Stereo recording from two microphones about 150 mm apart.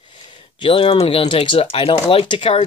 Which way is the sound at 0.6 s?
35° left (ahead or behind).